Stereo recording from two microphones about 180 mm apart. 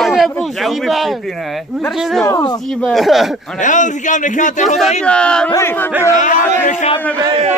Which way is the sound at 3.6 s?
45° left (ahead or behind).